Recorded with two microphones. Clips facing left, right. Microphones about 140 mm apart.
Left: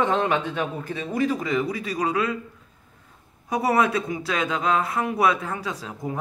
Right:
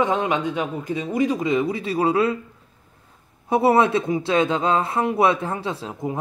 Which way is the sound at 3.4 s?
25° right (ahead or behind).